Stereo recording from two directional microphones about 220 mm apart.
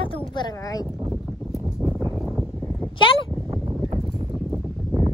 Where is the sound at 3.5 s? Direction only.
25° right (ahead or behind).